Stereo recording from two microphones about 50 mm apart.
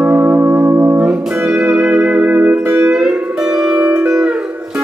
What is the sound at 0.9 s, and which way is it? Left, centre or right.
Music, right.